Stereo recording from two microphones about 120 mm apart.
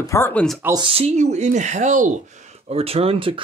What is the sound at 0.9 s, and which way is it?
Speech, 60° right (ahead or behind).